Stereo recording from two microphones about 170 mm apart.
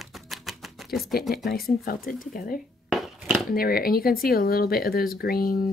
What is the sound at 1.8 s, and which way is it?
Speech, 55° left (ahead or behind).